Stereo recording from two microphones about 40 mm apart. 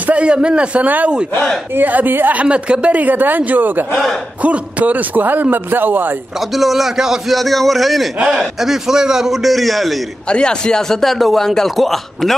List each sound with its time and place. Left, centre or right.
0.0 s a man's voice: right
0.8 s a man's voice: right
2.4 s a woman's voice: right
2.9 s a man's voice: right
4.4 s a man's voice: right
6.5 s speech: centre
7.3 s a man's voice: centre
9.4 s speech: centre
10.2 s speech: left; by 12.4 s centre